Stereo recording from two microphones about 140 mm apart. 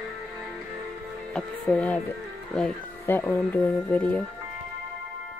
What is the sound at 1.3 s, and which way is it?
Speech, 10° left (ahead or behind).